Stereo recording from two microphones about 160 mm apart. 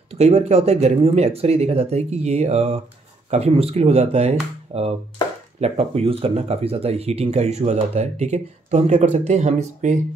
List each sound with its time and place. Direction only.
0.1 s speech: 40° right (ahead or behind)